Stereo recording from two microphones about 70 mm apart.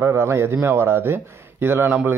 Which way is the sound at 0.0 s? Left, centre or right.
Right.